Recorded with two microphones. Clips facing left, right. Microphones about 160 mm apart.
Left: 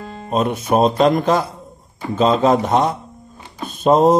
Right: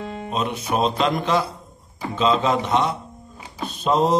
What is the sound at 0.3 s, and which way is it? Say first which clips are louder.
Speech: left 7 dB; 45° left (ahead or behind).